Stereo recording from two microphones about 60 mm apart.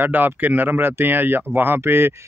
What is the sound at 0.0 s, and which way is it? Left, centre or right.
Speech, right.